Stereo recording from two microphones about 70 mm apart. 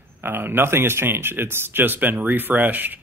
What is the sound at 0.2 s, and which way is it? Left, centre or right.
Speech, right.